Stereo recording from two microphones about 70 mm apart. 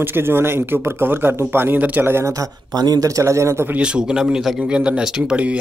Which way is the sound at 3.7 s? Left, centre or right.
Centre.